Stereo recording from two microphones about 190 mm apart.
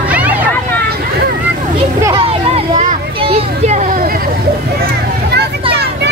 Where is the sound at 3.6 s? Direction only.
40° right (ahead or behind).